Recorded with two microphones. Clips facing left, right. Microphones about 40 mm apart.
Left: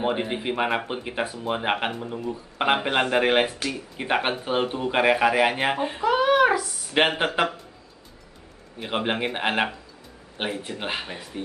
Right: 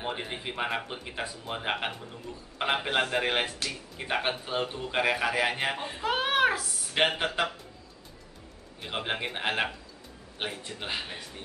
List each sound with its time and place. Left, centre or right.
0.0 s speech: centre
6.0 s a sound: centre
6.9 s speech: left
8.7 s speech: centre